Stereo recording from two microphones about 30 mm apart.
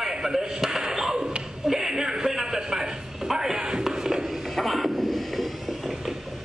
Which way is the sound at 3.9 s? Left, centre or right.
Centre.